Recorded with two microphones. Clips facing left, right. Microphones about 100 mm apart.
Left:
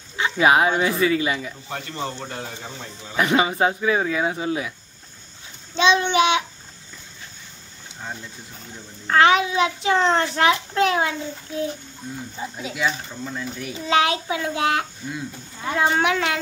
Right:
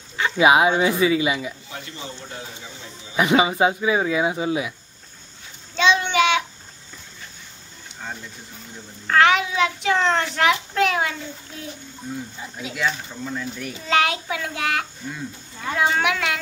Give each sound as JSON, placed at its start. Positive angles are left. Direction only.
{"t": 0.4, "sound": "speech", "side_deg": -10}
{"t": 1.7, "sound": "a man's voice", "side_deg": 60}
{"t": 3.2, "sound": "speech", "side_deg": -10}
{"t": 5.8, "sound": "a child's voice", "side_deg": 20}
{"t": 9.0, "sound": "a child's voice", "side_deg": 20}
{"t": 12.4, "sound": "a child's voice", "side_deg": 25}
{"t": 13.1, "sound": "speech", "side_deg": 5}
{"t": 13.8, "sound": "a child's voice", "side_deg": 20}